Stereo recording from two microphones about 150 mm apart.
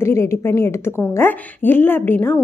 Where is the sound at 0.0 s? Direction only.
15° left (ahead or behind).